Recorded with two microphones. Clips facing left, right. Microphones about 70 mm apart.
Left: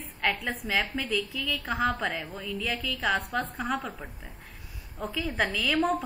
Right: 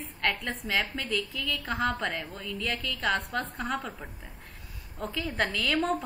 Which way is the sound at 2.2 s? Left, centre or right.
Centre.